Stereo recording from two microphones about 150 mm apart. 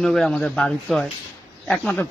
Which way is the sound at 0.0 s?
Centre (ahead or behind).